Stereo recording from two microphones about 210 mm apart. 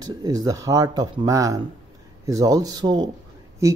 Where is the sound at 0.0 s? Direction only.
15° right (ahead or behind).